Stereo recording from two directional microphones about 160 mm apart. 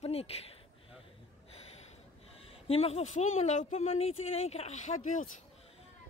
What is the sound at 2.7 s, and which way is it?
Speech, 40° left (ahead or behind).